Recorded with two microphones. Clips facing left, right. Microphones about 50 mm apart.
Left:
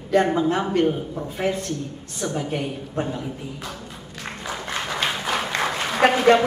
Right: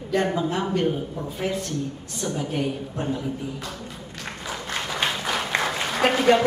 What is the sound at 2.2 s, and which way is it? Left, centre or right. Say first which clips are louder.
Speech: left 1 dB; centre.